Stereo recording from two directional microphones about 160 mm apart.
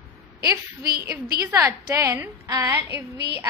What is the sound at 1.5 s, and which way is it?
A woman's voice, 20° right (ahead or behind).